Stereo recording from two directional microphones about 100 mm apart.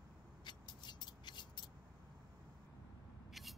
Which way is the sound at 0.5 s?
45° left (ahead or behind).